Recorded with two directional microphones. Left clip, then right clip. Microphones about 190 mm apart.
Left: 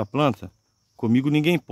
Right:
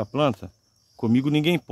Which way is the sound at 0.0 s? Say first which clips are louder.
Left 1 dB; 25° left (ahead or behind).